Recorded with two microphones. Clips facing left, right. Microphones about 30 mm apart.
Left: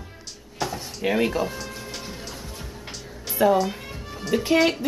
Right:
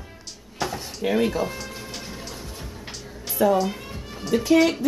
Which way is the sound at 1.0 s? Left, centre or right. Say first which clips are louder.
Even; centre.